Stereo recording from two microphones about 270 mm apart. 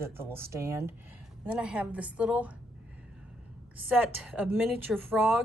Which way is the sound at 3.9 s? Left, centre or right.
Centre.